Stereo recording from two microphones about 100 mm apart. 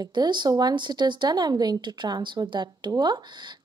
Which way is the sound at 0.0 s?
45° right (ahead or behind).